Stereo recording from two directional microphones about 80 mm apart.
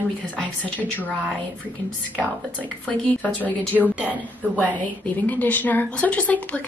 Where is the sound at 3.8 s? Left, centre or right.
Centre.